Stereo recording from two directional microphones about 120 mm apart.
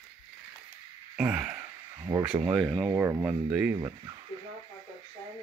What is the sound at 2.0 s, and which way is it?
Speech, 30° right (ahead or behind).